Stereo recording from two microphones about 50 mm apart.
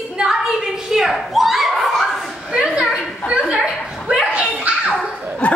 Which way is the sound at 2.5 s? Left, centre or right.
Centre.